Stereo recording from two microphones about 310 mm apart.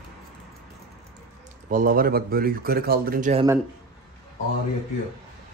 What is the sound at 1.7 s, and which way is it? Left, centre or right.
Speech, right.